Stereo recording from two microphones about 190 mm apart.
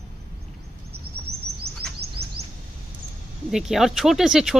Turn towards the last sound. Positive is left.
turn(degrees=0)  # may be behind; listen again after turning